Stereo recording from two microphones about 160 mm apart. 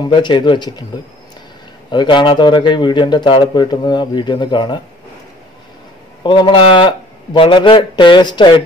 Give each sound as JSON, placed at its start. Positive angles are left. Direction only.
{"t": 0.0, "sound": "a man's voice", "side_deg": 30}
{"t": 1.9, "sound": "a man's voice", "side_deg": 30}
{"t": 6.2, "sound": "a man's voice", "side_deg": 30}